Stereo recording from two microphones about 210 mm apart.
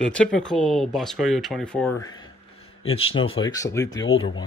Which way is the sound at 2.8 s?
75° left (ahead or behind).